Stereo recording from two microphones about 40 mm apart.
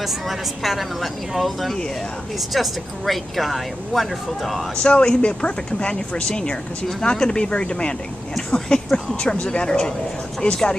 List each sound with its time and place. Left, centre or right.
0.0 s speech: centre
4.8 s speech: left